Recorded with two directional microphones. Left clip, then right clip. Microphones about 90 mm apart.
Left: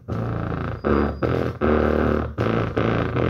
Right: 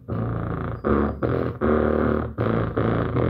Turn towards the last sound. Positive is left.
turn(degrees=15)  # may be behind; listen again after turning